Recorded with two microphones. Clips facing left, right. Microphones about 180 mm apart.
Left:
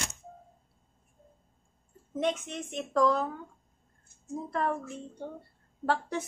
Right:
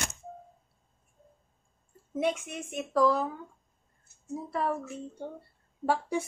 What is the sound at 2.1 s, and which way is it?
A woman's voice, 10° right (ahead or behind).